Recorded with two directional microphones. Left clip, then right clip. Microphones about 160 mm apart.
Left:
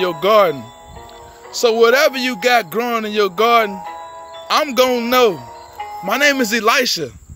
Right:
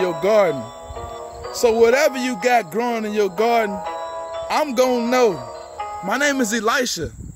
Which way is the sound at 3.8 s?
35° right (ahead or behind).